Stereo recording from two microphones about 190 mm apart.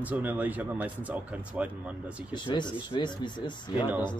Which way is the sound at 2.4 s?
25° left (ahead or behind).